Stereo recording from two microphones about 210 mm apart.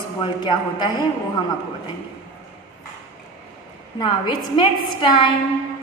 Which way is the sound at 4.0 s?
20° left (ahead or behind).